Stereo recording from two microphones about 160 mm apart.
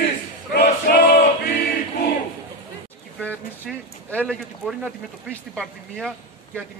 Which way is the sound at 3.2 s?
10° left (ahead or behind).